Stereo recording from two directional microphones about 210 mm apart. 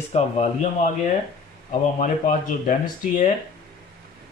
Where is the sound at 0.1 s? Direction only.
35° left (ahead or behind).